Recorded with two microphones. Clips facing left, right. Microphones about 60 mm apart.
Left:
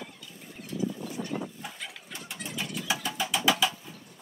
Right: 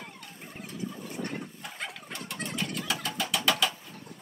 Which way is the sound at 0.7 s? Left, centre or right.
Right.